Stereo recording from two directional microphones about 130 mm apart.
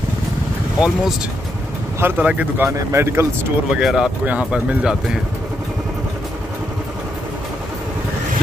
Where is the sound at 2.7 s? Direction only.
20° right (ahead or behind).